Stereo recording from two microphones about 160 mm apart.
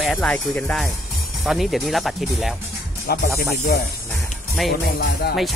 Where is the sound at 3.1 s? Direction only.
75° left (ahead or behind).